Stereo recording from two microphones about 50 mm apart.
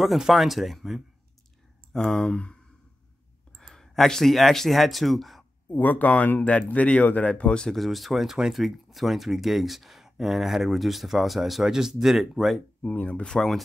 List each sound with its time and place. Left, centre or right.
0.0 s speech: centre
1.9 s speech: centre
3.5 s speech: centre
5.7 s speech: left
7.2 s speech: centre
7.7 s speech: centre
12.9 s speech: left
13.3 s speech: centre